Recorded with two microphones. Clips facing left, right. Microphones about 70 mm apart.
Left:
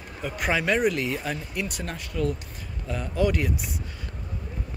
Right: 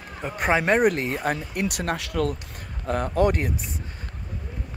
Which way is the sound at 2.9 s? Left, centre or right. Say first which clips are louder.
Right 4 dB; right.